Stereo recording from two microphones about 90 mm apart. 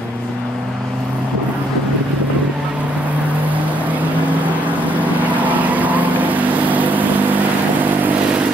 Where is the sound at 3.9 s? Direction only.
15° right (ahead or behind).